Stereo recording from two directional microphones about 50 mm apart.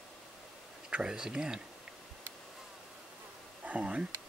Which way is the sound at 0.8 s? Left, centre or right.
Centre.